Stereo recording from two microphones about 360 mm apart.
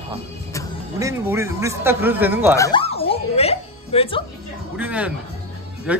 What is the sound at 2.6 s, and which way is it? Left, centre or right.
Music, centre.